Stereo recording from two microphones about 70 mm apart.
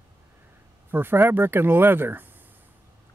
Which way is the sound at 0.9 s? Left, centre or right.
Right.